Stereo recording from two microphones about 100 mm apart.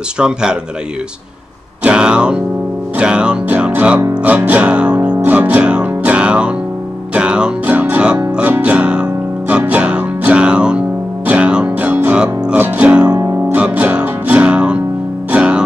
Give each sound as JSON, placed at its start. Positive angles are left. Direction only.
{"t": 0.2, "sound": "speech", "side_deg": -10}
{"t": 1.8, "sound": "music", "side_deg": -10}
{"t": 13.2, "sound": "music", "side_deg": -20}
{"t": 13.6, "sound": "music", "side_deg": -10}